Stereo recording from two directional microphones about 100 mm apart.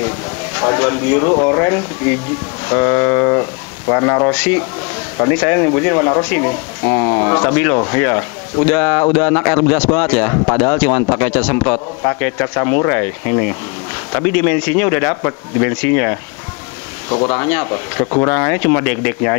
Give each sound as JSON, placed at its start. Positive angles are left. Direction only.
{"t": 0.6, "sound": "a man's voice", "side_deg": 20}